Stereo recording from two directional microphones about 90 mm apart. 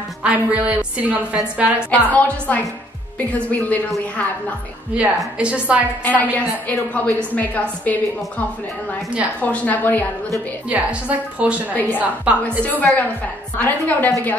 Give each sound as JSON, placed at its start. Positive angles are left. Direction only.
{"t": 0.2, "sound": "a woman's voice", "side_deg": -15}
{"t": 1.9, "sound": "a woman's voice", "side_deg": 15}
{"t": 4.9, "sound": "a woman's voice", "side_deg": -10}
{"t": 6.3, "sound": "a woman's voice", "side_deg": 15}
{"t": 9.4, "sound": "a woman's voice", "side_deg": 20}
{"t": 10.7, "sound": "a woman's voice", "side_deg": -15}
{"t": 11.7, "sound": "a woman's voice", "side_deg": 20}